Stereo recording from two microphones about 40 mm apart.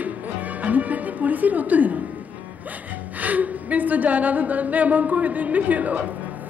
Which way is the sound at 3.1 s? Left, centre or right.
Right.